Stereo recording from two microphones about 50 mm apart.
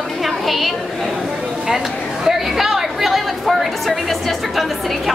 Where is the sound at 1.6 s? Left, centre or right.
Centre.